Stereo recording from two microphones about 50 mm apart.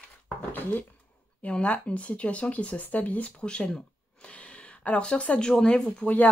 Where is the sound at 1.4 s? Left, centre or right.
Left.